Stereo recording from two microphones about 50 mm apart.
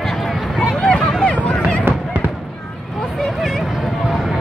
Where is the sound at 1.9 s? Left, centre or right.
Right.